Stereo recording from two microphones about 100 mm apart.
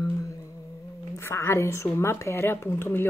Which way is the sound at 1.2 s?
25° left (ahead or behind).